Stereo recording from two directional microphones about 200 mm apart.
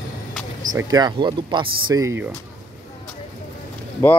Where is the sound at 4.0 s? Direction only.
15° left (ahead or behind).